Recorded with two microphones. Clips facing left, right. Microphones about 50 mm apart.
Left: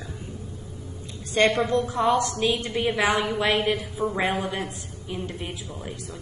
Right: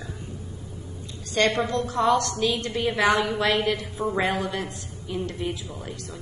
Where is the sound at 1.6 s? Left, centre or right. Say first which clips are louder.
Even; centre.